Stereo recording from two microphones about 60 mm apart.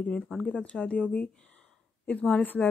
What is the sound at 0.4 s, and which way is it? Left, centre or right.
Speech, left.